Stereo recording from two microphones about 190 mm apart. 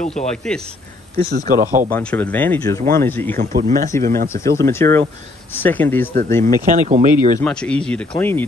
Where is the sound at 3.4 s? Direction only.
45° right (ahead or behind).